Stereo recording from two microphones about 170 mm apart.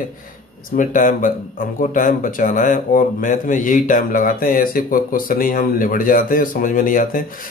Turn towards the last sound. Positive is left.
turn(degrees=55)  # may be behind; listen again after turning